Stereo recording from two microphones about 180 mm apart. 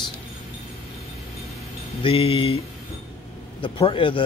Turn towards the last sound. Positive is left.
turn(degrees=30)  # may be behind; listen again after turning